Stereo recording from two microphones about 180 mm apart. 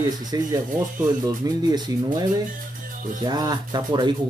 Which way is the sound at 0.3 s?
20° right (ahead or behind).